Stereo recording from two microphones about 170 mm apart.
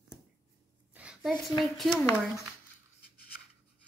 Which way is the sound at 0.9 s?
5° right (ahead or behind).